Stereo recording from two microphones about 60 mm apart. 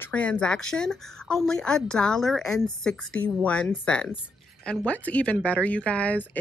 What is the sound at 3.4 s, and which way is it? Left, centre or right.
Speech, centre.